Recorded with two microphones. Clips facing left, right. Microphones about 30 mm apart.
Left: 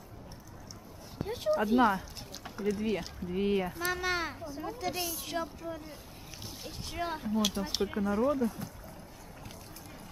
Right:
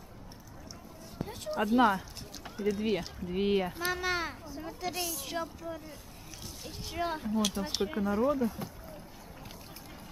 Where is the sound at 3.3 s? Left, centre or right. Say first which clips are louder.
Right 1 dB; centre.